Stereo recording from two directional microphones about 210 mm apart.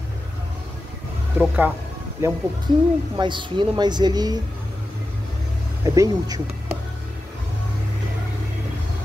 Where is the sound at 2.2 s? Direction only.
10° right (ahead or behind).